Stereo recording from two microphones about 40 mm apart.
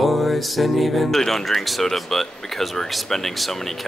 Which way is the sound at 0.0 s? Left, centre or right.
Centre.